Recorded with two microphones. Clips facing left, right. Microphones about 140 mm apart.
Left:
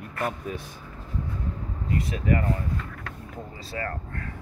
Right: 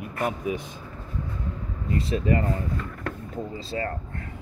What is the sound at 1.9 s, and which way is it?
Speech, 30° right (ahead or behind).